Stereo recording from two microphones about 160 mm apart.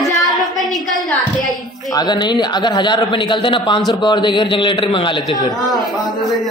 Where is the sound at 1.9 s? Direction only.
25° left (ahead or behind).